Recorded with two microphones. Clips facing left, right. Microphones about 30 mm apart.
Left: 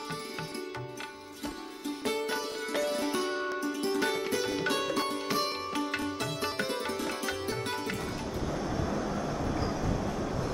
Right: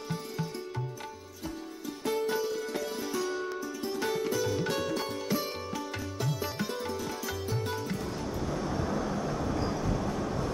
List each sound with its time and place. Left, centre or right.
2.0 s music: left
2.4 s music: left
3.6 s music: left
4.0 s music: left
6.9 s music: left
7.2 s tabla: left